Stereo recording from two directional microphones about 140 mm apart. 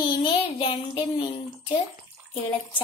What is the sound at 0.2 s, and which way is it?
A child's voice, 40° left (ahead or behind).